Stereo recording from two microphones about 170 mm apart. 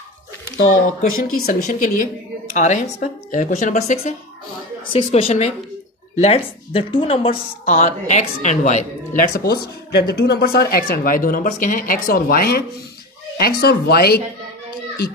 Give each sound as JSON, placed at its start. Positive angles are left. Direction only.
{"t": 1.1, "sound": "speech", "side_deg": 55}
{"t": 9.4, "sound": "speech", "side_deg": 65}